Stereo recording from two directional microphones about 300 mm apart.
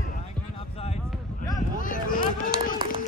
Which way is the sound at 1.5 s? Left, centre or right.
Centre.